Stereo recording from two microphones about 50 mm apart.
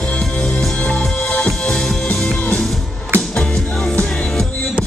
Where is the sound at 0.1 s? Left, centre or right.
Left.